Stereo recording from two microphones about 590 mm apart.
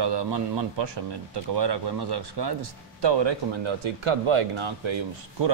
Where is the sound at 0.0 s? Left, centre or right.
Right.